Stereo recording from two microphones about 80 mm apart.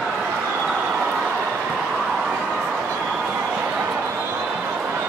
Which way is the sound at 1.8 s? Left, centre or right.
Centre.